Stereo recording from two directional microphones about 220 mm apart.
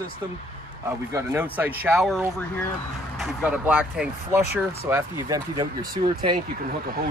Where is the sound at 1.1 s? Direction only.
10° right (ahead or behind).